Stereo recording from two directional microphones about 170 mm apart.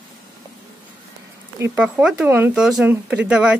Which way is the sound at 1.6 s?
10° right (ahead or behind).